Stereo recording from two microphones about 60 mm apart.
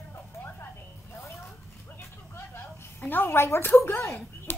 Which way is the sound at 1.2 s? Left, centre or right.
Left.